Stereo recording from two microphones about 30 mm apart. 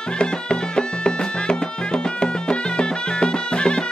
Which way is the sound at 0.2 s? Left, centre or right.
Left.